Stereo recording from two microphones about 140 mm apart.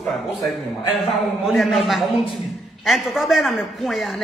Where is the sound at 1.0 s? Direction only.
Centre (ahead or behind).